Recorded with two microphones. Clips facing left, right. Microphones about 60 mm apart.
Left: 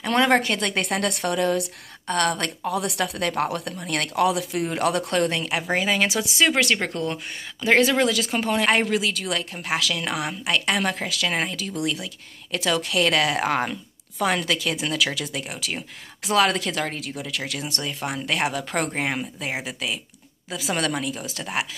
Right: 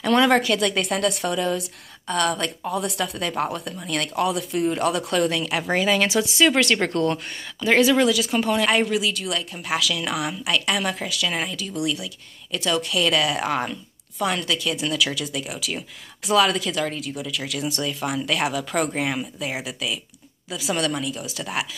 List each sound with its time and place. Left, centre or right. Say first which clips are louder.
0.0 s speech: right 2 dB; left
0.8 s a woman's voice: right 1 dB; left
5.1 s speech: right 1 dB; left
5.5 s speech: right 2 dB; left
8.8 s speech: even; left
9.7 s speech: right 1 dB; left
10.9 s speech: left 1 dB; left
12.4 s a woman's voice: even; left
15.3 s speech: right 1 dB; left
16.3 s a woman's voice: right 1 dB; left
17.8 s speech: right 1 dB; left
20.7 s speech: right 1 dB; left